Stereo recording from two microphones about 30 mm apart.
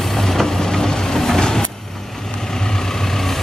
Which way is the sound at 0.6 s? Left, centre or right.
Left.